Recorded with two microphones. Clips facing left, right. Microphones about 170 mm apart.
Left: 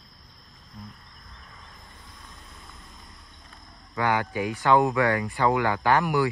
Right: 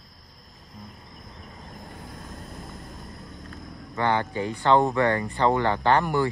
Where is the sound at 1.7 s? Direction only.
60° right (ahead or behind).